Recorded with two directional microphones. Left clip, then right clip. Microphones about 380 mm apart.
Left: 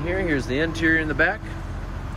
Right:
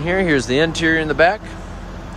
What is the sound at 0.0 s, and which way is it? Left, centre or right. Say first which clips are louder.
Speech: right 7 dB; right.